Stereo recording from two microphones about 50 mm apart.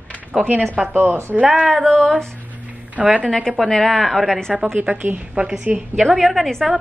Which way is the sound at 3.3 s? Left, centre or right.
Centre.